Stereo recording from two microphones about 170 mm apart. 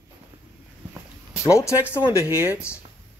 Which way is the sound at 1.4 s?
20° left (ahead or behind).